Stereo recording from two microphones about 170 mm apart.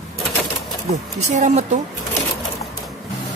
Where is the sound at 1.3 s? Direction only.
45° right (ahead or behind).